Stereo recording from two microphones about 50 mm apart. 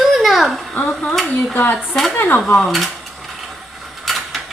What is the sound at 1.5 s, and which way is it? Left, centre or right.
Speech, left.